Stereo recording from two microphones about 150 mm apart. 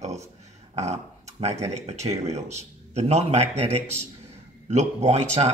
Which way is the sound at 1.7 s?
45° right (ahead or behind).